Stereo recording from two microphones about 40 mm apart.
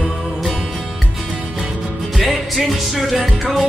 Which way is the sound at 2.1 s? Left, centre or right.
Centre.